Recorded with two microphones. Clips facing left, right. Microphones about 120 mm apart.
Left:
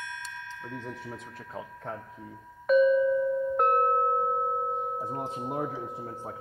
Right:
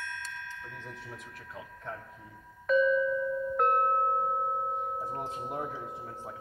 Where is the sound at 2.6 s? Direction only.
20° left (ahead or behind).